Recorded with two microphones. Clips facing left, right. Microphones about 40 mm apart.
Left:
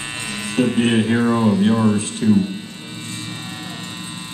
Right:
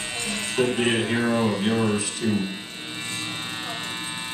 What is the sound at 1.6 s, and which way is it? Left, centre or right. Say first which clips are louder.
Speech: left 6 dB; centre.